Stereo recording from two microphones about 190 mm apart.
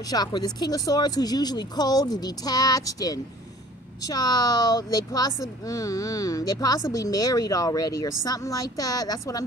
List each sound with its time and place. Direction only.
0.1 s speech: 20° left (ahead or behind)